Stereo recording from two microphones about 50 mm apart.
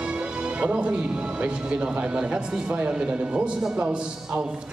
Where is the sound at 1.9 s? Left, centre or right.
Right.